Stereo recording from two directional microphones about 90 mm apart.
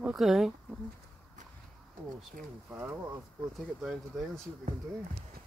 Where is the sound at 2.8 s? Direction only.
25° right (ahead or behind).